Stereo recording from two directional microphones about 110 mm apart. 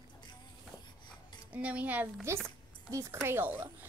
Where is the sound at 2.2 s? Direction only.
25° right (ahead or behind).